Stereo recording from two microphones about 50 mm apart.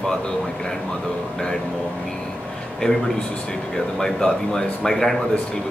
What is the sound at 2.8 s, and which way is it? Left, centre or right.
Speech, centre.